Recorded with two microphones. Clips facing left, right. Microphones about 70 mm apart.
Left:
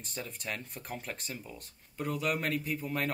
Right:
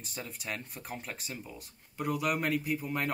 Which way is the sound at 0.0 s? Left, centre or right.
Centre.